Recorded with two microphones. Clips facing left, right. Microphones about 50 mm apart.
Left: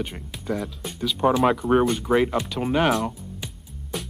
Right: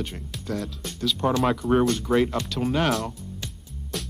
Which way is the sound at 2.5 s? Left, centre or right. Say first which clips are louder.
Left 2 dB; centre.